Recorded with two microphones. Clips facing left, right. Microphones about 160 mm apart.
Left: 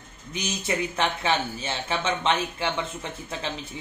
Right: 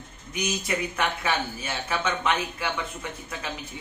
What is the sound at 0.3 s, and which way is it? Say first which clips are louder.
Speech: even; 25° left (ahead or behind).